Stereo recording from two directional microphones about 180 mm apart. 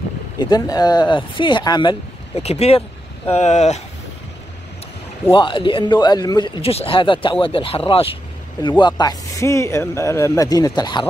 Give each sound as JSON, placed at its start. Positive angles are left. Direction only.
{"t": 0.4, "sound": "speech", "side_deg": 20}
{"t": 5.3, "sound": "speech", "side_deg": 25}